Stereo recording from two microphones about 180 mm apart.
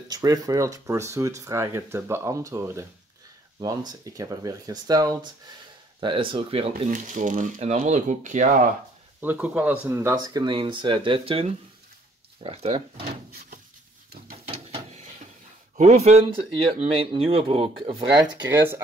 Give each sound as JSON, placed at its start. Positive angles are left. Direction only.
{"t": 0.1, "sound": "speech", "side_deg": -20}
{"t": 6.9, "sound": "speech", "side_deg": -45}
{"t": 9.2, "sound": "speech", "side_deg": -10}
{"t": 10.2, "sound": "speech", "side_deg": -25}
{"t": 12.4, "sound": "speech", "side_deg": -35}
{"t": 14.5, "sound": "a sound", "side_deg": -35}
{"t": 15.7, "sound": "speech", "side_deg": -40}